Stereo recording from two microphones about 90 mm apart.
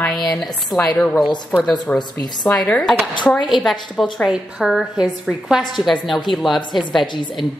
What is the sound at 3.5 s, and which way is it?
A woman's voice, centre (ahead or behind).